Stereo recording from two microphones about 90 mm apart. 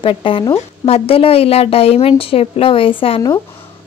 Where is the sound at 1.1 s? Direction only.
90° left.